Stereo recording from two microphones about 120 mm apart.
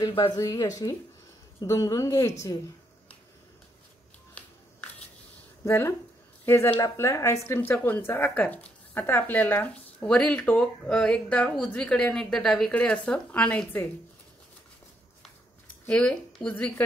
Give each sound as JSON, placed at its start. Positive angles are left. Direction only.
{"t": 0.1, "sound": "speech", "side_deg": 50}
{"t": 0.4, "sound": "speech", "side_deg": 30}
{"t": 4.4, "sound": "shuffling cards", "side_deg": 10}
{"t": 5.7, "sound": "speech", "side_deg": 25}
{"t": 15.8, "sound": "speech", "side_deg": 10}